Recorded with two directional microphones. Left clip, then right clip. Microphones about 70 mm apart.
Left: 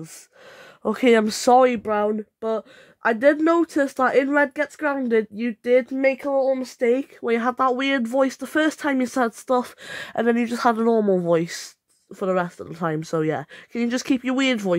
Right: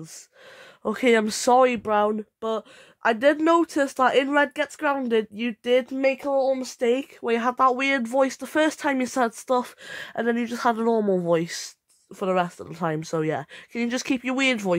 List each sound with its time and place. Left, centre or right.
0.8 s speech: left
1.8 s speech: centre
7.2 s speech: centre
9.8 s speech: left
10.8 s speech: left
12.1 s speech: centre